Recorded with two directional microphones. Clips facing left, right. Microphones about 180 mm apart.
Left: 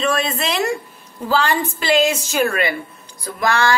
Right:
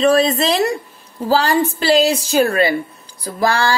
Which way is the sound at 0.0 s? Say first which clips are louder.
Right 7 dB; 35° right (ahead or behind).